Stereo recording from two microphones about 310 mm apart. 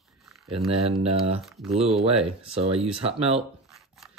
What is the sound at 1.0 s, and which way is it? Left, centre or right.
Speech, centre.